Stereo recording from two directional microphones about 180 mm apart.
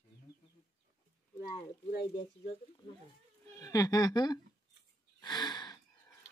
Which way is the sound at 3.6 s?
20° left (ahead or behind).